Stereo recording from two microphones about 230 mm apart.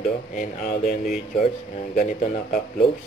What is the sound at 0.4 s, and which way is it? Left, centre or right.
Speech, left.